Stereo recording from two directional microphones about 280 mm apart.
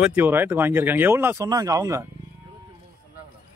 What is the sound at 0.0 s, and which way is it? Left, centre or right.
Speech, centre.